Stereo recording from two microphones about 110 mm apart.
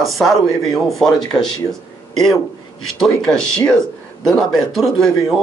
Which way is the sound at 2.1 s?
5° left (ahead or behind).